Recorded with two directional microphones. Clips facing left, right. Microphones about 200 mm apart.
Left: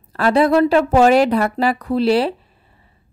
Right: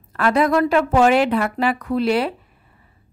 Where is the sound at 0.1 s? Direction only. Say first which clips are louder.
Left 3 dB; 30° left (ahead or behind).